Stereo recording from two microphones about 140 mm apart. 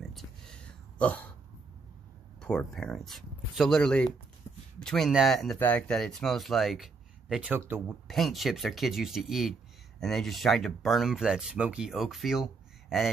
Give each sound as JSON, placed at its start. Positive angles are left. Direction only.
{"t": 0.1, "sound": "a sound", "side_deg": 5}
{"t": 2.4, "sound": "speech", "side_deg": 5}
{"t": 7.5, "sound": "speech", "side_deg": -15}
{"t": 7.9, "sound": "speech", "side_deg": 0}